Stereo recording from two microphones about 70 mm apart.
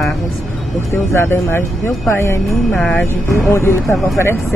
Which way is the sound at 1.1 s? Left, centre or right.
Left.